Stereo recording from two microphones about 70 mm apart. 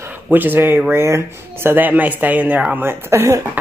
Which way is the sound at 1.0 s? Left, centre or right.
Right.